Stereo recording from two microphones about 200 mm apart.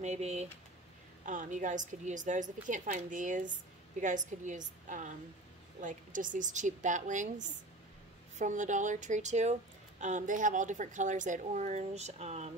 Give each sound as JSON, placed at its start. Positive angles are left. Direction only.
{"t": 0.0, "sound": "speech", "side_deg": -35}